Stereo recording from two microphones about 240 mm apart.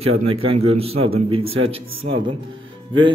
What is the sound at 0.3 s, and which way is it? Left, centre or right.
A man's voice, right.